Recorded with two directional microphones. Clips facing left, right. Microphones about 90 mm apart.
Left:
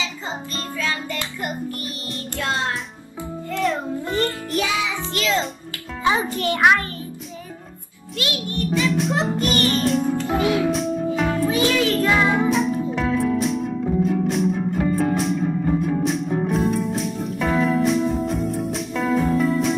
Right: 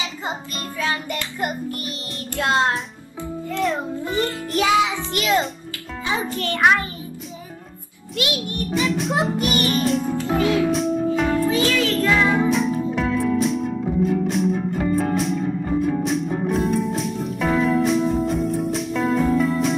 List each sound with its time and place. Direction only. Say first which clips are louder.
0.0 s music: right 1 dB; 20° right (ahead or behind)
3.4 s music: even; centre (ahead or behind)
4.6 s music: right 6 dB; 20° right (ahead or behind)
6.6 s music: even; centre (ahead or behind)
8.2 s a child's voice: right 1 dB; 20° right (ahead or behind)
8.7 s music: even; centre (ahead or behind)
9.2 s music: even; 15° right (ahead or behind)
10.2 s music: right 1 dB; 15° left (ahead or behind)
10.7 s music: right 2 dB; centre (ahead or behind)
11.5 s music: left 1 dB; 15° left (ahead or behind)
12.4 s music: even; centre (ahead or behind)